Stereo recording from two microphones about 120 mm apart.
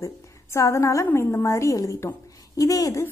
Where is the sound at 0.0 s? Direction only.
25° left (ahead or behind).